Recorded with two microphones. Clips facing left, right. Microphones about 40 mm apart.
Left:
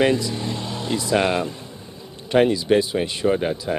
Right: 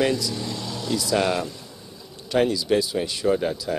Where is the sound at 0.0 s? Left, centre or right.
Left.